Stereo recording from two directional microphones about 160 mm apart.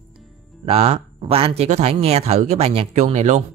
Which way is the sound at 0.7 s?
40° right (ahead or behind).